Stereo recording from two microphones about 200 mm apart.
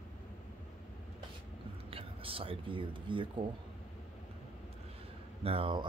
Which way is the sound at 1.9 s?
25° right (ahead or behind).